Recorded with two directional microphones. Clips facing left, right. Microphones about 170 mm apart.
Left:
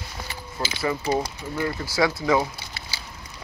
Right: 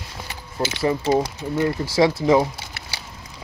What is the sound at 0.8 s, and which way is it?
Speech, 25° right (ahead or behind).